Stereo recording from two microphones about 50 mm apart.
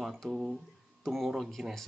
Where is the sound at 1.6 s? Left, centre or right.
Centre.